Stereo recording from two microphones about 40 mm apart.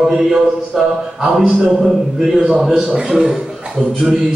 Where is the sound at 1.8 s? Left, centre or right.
Centre.